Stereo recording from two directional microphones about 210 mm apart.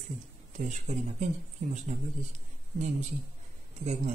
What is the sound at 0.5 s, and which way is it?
Speech, 35° right (ahead or behind).